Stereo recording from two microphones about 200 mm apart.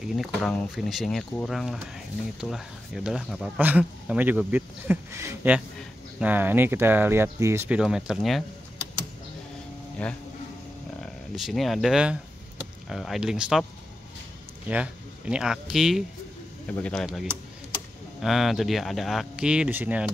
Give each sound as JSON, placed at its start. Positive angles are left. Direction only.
{"t": 0.0, "sound": "speech", "side_deg": 0}
{"t": 11.3, "sound": "speech", "side_deg": 0}
{"t": 14.7, "sound": "speech", "side_deg": -5}